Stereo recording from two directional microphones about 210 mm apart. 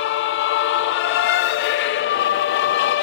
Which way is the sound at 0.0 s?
65° left (ahead or behind).